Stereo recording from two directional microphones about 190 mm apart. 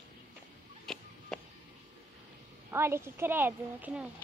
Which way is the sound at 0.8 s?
5° left (ahead or behind).